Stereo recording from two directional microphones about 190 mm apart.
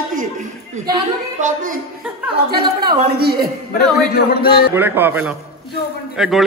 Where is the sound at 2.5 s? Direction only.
55° right (ahead or behind).